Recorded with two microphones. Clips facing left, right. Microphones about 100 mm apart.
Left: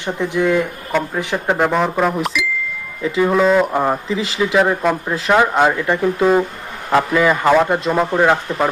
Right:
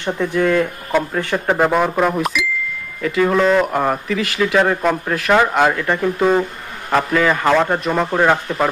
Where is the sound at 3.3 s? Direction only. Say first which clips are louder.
Left 1 dB; 5° left (ahead or behind).